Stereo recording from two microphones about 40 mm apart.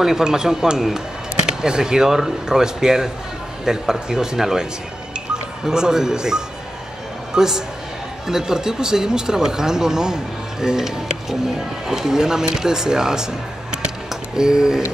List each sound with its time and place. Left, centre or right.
0.0 s speech: centre